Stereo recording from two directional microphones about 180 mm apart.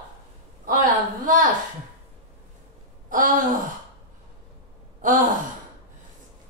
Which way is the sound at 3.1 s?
45° right (ahead or behind).